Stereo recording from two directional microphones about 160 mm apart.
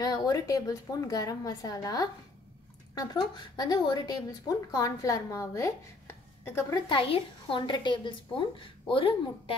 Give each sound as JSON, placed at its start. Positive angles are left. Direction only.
{"t": 0.0, "sound": "a woman's voice", "side_deg": 25}
{"t": 6.9, "sound": "a woman's voice", "side_deg": 30}